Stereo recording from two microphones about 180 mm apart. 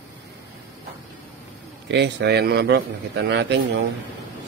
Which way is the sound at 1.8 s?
70° right (ahead or behind).